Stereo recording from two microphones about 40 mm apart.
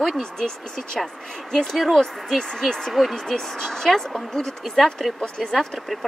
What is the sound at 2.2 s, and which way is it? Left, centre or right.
Speech, centre.